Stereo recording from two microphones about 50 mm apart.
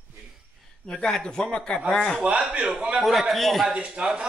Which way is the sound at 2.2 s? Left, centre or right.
Right.